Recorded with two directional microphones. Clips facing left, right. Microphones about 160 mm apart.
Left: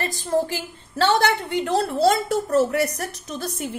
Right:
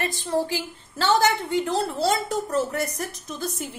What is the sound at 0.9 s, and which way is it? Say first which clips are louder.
A woman's voice: left 2 dB; 65° left (ahead or behind).